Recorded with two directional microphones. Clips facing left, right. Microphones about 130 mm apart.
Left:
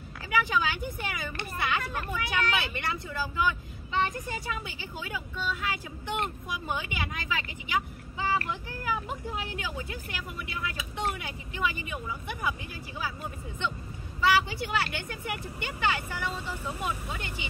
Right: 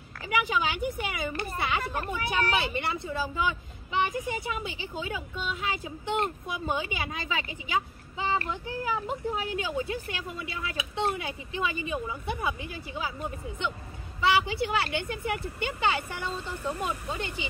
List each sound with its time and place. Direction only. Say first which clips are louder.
0.3 s speech: even; 20° right (ahead or behind)
14.2 s speech: right 1 dB; 25° right (ahead or behind)
16.3 s speech: right 3 dB; 5° left (ahead or behind)